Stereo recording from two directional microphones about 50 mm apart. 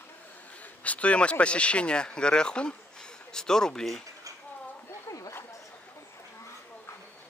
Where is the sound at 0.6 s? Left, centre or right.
Left.